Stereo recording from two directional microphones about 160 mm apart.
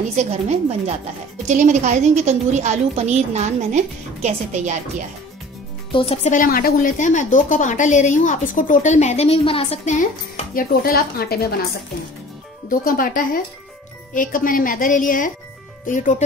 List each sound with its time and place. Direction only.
0.1 s a woman's voice: 45° right (ahead or behind)
5.9 s speech: 35° left (ahead or behind)
6.3 s a woman's voice: 60° left (ahead or behind); by 9.8 s 35° left (ahead or behind)
9.8 s speech: 50° left (ahead or behind); by 11.6 s 75° left (ahead or behind)
12.6 s a woman's voice: 60° left (ahead or behind)